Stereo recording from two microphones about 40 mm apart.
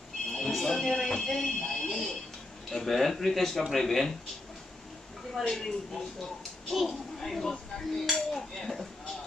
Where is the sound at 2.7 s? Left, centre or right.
Centre.